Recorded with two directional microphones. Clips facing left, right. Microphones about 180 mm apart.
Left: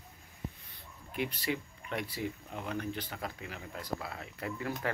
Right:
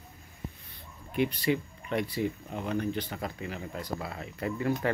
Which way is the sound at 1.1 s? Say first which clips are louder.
Right 7 dB; 5° left (ahead or behind).